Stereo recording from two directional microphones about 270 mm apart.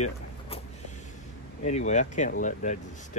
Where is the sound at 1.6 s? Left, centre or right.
Left.